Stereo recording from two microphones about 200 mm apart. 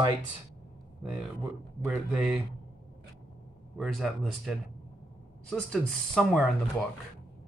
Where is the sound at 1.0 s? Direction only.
10° right (ahead or behind).